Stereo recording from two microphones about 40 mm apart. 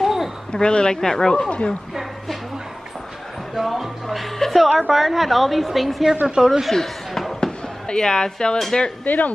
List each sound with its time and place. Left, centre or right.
0.0 s a sound: centre
0.5 s speech: left
1.5 s speech: left
3.5 s a woman's voice: centre
6.4 s speech: centre
6.7 s a sound: centre
7.9 s speech: left
9.0 s speech: left